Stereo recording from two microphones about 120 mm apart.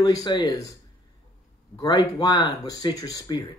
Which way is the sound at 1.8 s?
35° left (ahead or behind).